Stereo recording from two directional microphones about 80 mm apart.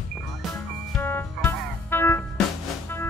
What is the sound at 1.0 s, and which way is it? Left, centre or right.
Music, left.